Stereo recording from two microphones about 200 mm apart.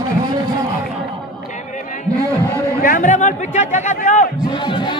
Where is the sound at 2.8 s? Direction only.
40° left (ahead or behind).